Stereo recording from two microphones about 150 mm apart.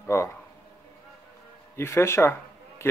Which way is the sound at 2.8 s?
15° left (ahead or behind).